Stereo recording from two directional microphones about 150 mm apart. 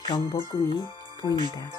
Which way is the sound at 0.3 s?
30° left (ahead or behind).